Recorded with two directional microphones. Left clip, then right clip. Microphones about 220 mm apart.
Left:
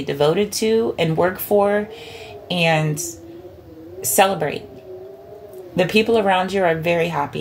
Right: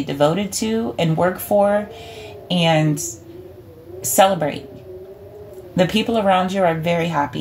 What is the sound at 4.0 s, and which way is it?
Speech, 25° left (ahead or behind).